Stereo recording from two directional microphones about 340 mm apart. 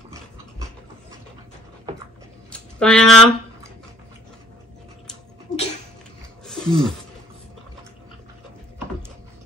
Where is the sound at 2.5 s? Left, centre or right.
Centre.